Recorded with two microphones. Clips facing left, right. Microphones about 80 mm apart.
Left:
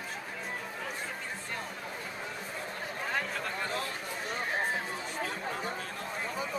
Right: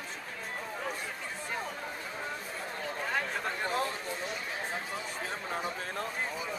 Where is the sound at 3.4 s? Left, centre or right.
Right.